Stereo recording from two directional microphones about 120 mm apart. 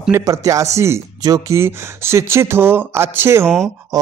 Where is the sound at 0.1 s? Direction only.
30° right (ahead or behind).